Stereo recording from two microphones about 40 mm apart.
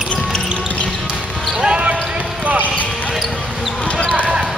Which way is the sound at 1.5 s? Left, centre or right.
Right.